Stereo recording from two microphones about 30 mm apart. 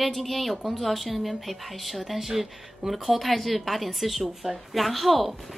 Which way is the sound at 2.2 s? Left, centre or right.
Centre.